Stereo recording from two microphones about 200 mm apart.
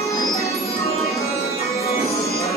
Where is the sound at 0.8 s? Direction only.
30° left (ahead or behind).